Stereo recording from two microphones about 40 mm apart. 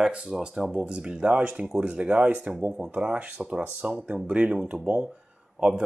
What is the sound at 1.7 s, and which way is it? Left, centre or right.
Speech, right.